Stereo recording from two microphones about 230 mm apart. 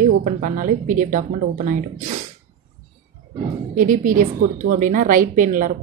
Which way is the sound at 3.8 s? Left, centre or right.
Right.